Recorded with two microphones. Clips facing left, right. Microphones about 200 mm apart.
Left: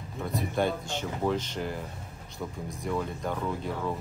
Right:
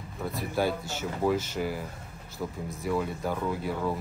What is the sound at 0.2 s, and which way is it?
Speech, centre (ahead or behind).